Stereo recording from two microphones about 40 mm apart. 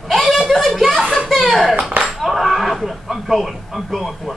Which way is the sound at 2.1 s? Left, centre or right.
Centre.